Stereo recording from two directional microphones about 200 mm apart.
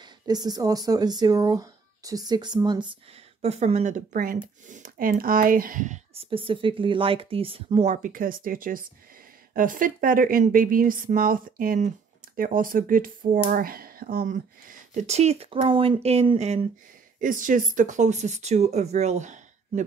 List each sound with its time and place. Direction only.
0.0 s speech: 20° right (ahead or behind)
3.3 s speech: 35° right (ahead or behind)